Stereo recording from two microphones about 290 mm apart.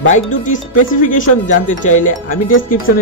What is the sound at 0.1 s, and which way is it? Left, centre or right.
Speech, left.